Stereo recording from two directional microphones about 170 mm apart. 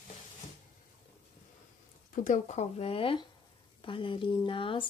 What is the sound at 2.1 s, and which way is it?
Speech, 45° left (ahead or behind).